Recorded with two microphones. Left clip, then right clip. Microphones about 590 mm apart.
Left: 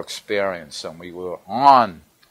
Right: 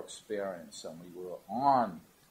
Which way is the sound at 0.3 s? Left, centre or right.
Left.